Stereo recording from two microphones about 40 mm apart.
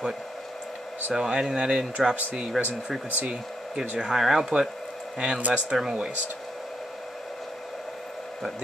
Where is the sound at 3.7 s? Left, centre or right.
Centre.